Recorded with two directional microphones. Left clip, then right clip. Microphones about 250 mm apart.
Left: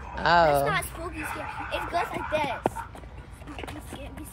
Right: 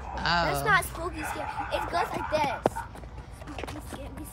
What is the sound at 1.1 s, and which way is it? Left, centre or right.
Speech, right.